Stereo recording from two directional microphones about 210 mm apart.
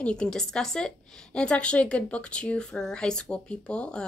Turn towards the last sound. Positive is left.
turn(degrees=5)  # may be behind; listen again after turning